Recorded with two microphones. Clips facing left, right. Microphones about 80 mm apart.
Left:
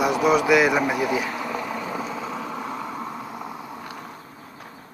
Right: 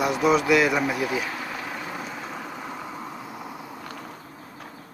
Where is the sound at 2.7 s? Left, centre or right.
Left.